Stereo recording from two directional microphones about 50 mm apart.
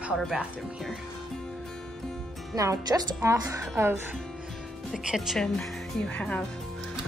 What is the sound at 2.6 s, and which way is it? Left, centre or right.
A woman's voice, right.